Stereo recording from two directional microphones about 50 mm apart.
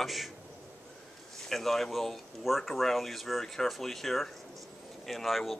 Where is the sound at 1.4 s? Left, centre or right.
Centre.